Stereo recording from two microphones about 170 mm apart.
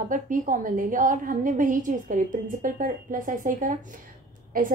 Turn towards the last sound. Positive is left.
turn(degrees=-55)  # may be behind; listen again after turning